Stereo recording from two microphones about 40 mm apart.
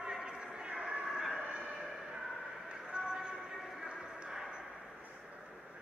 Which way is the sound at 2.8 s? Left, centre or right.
Right.